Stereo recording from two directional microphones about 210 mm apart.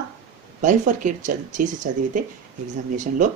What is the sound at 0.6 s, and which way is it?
Speech, 35° right (ahead or behind).